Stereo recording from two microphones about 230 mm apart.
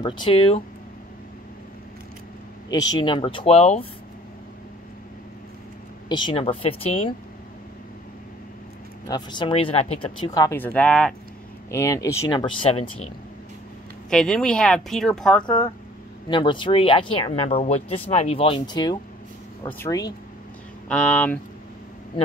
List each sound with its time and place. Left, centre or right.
0.0 s speech: left
2.7 s speech: centre
6.0 s speech: centre
9.0 s speech: centre
14.1 s speech: centre
16.3 s speech: left
20.9 s speech: centre